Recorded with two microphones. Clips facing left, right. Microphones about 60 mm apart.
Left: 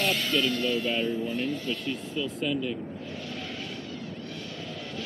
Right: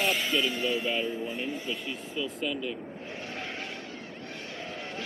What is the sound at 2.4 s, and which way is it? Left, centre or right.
Speech, centre.